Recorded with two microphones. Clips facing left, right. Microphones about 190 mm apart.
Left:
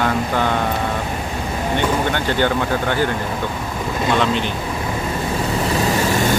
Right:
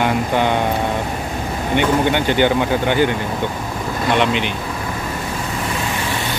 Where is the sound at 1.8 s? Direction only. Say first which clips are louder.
Right 5 dB; 15° right (ahead or behind).